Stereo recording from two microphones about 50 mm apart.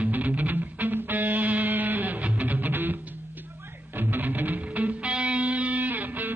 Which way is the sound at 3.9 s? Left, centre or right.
Right.